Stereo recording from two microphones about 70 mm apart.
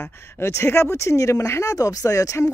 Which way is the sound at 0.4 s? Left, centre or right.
Left.